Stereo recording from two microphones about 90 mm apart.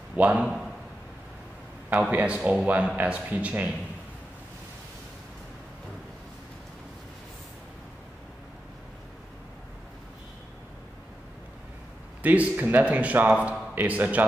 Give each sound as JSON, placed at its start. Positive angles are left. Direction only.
{"t": 0.1, "sound": "a man's voice", "side_deg": -15}
{"t": 1.9, "sound": "a man's voice", "side_deg": -20}
{"t": 12.2, "sound": "a man's voice", "side_deg": -20}